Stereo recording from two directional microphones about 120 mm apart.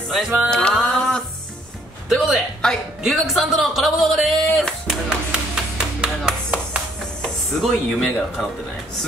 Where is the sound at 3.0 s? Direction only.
Centre (ahead or behind).